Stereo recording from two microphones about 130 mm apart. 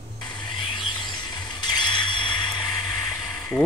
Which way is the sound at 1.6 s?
35° left (ahead or behind).